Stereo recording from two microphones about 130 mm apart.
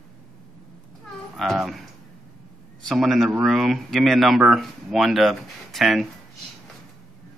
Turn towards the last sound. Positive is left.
turn(degrees=0)  # may be behind; listen again after turning